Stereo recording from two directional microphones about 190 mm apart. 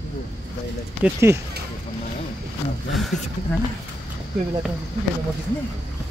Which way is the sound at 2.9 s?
Centre (ahead or behind).